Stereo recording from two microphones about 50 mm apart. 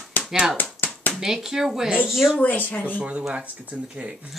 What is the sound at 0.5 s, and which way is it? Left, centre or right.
Clapping, left.